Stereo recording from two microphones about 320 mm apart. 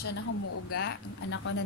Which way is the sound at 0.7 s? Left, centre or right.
Left.